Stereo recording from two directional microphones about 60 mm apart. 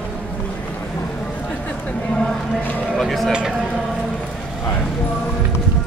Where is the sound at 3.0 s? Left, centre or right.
Centre.